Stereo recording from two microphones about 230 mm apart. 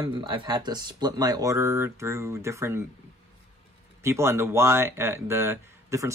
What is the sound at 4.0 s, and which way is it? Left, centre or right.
Speech, centre.